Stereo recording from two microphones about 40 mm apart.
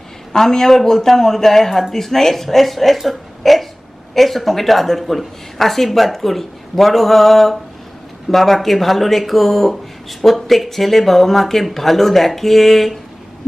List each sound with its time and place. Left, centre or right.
0.3 s a man's voice: centre